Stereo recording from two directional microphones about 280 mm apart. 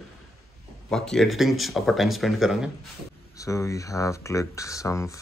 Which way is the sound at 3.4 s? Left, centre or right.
Centre.